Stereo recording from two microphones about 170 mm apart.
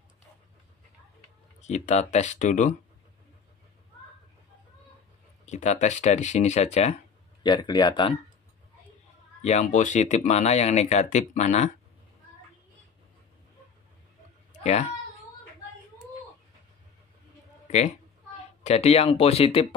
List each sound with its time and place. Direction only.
1.6 s speech: 40° left (ahead or behind)
5.4 s speech: 45° left (ahead or behind)
7.4 s speech: 25° left (ahead or behind)
9.4 s speech: 45° left (ahead or behind)
14.5 s cat: 40° left (ahead or behind)
17.6 s speech: 45° left (ahead or behind)